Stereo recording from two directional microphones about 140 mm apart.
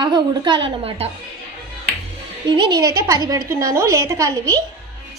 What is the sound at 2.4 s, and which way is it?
A woman's voice, 35° right (ahead or behind).